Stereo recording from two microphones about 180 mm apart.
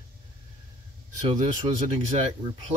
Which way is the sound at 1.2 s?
40° right (ahead or behind).